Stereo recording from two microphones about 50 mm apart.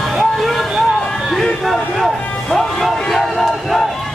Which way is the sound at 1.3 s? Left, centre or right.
Centre.